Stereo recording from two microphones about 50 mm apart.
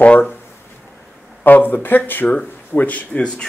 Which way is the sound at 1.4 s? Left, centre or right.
Left.